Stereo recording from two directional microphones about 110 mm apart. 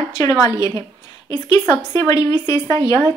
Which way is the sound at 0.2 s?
30° left (ahead or behind).